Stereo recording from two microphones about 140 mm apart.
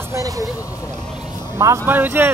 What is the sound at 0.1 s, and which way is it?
Vehicle, 25° right (ahead or behind).